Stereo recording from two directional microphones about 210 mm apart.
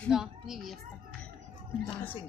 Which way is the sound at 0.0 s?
Centre (ahead or behind).